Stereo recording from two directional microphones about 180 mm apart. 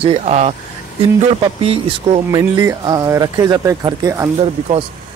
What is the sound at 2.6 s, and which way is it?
Speech, 15° right (ahead or behind).